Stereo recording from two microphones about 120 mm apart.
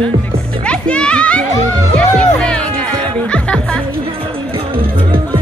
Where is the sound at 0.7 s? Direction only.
10° left (ahead or behind).